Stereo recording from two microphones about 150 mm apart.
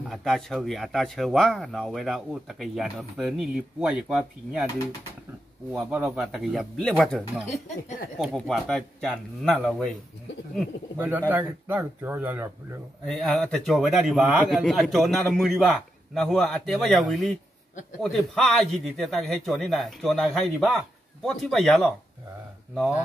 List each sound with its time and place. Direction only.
0.1 s speech: centre (ahead or behind)
5.7 s speech: 5° right (ahead or behind)
11.2 s speech: 10° right (ahead or behind)
13.0 s speech: 5° left (ahead or behind)